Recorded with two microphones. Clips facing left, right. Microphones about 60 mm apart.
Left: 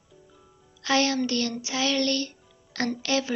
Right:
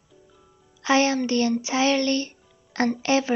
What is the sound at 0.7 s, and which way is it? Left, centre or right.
Music, right.